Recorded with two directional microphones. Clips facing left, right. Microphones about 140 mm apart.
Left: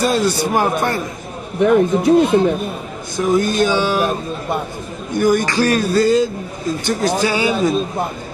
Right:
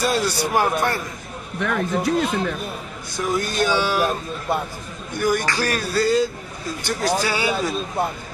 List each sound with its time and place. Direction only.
0.0 s music: 20° left (ahead or behind)
5.2 s music: 20° left (ahead or behind)